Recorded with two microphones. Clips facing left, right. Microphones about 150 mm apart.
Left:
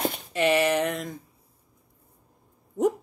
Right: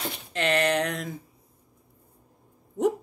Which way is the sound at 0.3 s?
10° left (ahead or behind).